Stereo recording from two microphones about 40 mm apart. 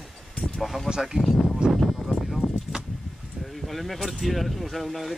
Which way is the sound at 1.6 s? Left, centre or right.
Right.